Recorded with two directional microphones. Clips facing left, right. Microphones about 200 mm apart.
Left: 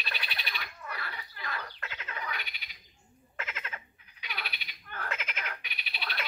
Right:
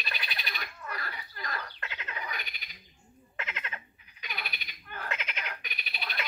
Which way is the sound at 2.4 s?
45° right (ahead or behind).